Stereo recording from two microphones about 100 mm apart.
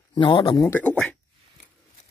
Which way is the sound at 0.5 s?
30° left (ahead or behind).